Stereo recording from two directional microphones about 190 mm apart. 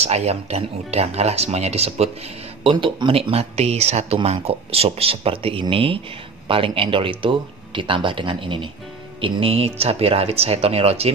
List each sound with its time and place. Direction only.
0.0 s speech: 35° right (ahead or behind)